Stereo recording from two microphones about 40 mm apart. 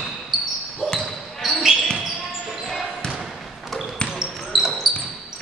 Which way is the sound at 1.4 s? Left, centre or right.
Centre.